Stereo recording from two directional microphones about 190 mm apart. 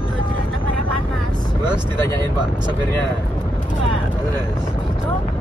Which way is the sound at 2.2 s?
25° right (ahead or behind).